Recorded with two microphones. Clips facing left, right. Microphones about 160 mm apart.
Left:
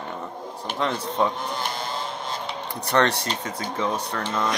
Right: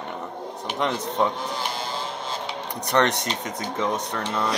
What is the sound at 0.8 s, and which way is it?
Speech, 20° right (ahead or behind).